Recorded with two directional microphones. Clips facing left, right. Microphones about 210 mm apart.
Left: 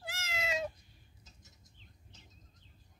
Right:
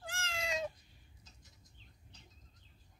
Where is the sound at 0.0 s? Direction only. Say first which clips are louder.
Left 2 dB; 5° left (ahead or behind).